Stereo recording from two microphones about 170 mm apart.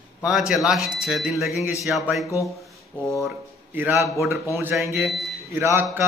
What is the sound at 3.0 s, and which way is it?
A man's voice, 15° right (ahead or behind).